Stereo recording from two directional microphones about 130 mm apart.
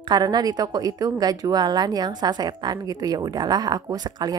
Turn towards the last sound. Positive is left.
turn(degrees=-30)  # may be behind; listen again after turning